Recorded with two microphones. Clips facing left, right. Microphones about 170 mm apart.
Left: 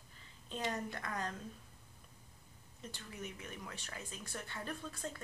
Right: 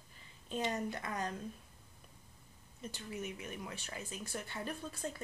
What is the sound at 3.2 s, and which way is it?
A woman's voice, 15° right (ahead or behind).